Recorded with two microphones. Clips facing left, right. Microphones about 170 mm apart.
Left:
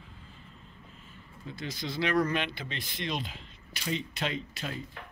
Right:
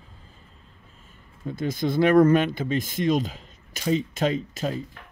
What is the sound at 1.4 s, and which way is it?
Speech, 50° right (ahead or behind).